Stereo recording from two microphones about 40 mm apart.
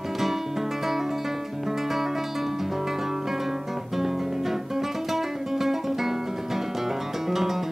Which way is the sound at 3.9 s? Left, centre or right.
Centre.